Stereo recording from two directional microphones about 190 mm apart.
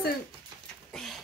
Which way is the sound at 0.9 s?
Centre (ahead or behind).